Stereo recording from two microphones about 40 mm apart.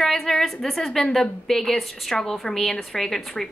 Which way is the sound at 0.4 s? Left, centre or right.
Centre.